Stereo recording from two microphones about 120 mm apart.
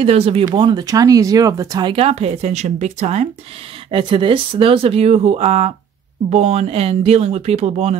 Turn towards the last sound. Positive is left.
turn(degrees=-60)  # may be behind; listen again after turning